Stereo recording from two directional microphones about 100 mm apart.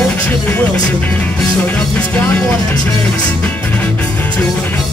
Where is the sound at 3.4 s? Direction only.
15° left (ahead or behind).